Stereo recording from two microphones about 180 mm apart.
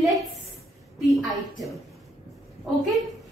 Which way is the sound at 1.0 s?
Centre (ahead or behind).